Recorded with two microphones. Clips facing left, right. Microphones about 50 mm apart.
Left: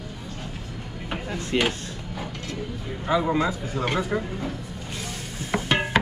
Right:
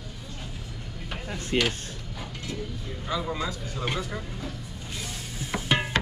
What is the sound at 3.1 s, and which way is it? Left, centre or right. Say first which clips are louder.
Speech: left 8 dB; left.